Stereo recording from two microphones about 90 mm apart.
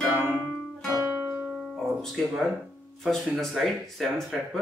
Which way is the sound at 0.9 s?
35° right (ahead or behind).